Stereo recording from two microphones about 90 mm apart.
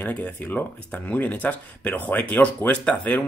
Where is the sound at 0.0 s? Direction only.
20° left (ahead or behind).